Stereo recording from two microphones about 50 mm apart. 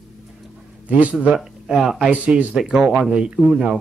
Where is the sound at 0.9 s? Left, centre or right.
Right.